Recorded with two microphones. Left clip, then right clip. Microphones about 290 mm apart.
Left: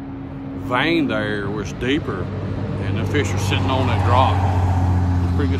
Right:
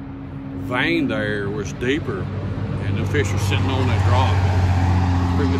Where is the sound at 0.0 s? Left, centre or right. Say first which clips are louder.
Left 2 dB; left.